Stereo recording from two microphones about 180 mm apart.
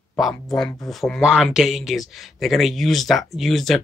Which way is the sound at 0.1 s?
Centre (ahead or behind).